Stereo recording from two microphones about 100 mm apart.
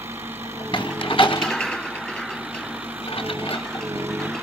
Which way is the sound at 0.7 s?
55° left (ahead or behind).